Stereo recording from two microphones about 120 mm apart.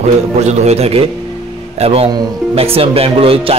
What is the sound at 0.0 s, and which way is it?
Speech, 70° right (ahead or behind).